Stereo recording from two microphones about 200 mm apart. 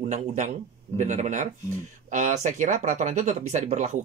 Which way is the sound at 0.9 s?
35° right (ahead or behind).